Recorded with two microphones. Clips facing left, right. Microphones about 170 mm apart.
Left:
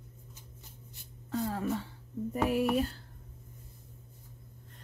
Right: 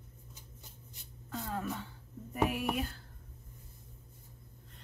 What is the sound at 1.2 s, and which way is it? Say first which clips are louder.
Speech: left 6 dB; 30° left (ahead or behind).